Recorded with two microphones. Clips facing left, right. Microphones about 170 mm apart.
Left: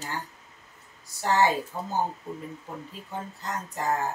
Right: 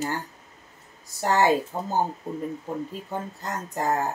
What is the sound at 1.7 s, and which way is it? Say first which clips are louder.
Speech: right 4 dB; 40° right (ahead or behind).